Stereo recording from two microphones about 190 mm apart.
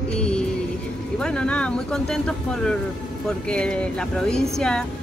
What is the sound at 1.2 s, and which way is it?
Speech, 5° left (ahead or behind).